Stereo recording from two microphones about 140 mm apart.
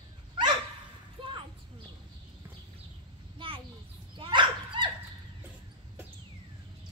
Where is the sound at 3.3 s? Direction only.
40° right (ahead or behind).